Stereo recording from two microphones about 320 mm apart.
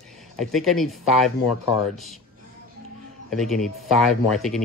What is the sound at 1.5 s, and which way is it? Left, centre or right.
Speech, left.